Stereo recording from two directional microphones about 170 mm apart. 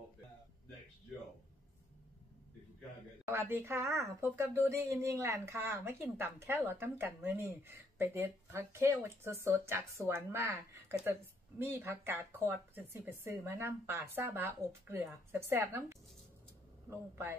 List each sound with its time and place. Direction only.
3.3 s speech: 15° right (ahead or behind)
17.1 s speech: 15° right (ahead or behind)